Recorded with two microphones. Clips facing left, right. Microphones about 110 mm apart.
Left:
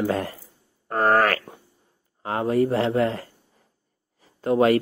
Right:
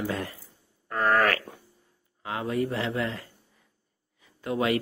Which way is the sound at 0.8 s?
40° left (ahead or behind).